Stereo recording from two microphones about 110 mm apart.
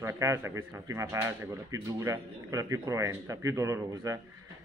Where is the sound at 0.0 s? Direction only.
25° right (ahead or behind).